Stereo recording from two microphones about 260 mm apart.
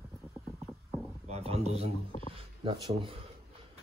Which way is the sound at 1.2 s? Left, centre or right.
Right.